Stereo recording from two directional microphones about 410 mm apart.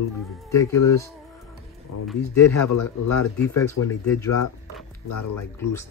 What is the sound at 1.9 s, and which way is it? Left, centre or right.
Speech, left.